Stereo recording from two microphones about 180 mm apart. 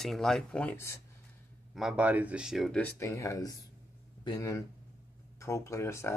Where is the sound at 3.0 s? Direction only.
15° left (ahead or behind).